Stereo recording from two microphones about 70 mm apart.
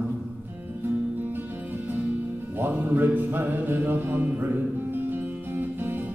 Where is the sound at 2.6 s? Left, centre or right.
Right.